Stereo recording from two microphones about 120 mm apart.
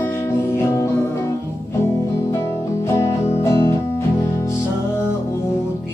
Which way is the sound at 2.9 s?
20° left (ahead or behind).